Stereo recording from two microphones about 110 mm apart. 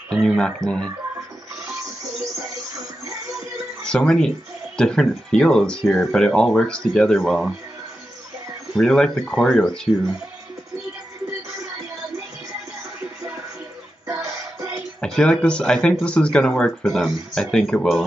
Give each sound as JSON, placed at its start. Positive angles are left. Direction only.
{"t": 0.1, "sound": "speech", "side_deg": 5}
{"t": 3.8, "sound": "speech", "side_deg": 5}
{"t": 8.7, "sound": "speech", "side_deg": 5}
{"t": 14.0, "sound": "music", "side_deg": -30}
{"t": 15.0, "sound": "speech", "side_deg": 5}